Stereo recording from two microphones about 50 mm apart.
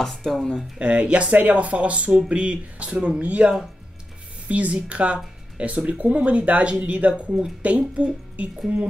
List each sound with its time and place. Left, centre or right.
0.0 s speech: centre
0.7 s speech: right